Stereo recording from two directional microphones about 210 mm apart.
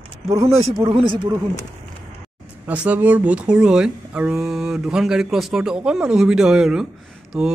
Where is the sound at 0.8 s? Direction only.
25° right (ahead or behind).